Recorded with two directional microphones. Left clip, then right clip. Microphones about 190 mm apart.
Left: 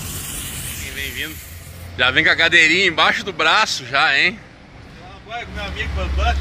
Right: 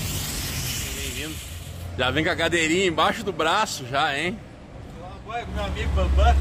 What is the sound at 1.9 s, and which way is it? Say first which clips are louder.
A man's voice: left 8 dB; 15° right (ahead or behind).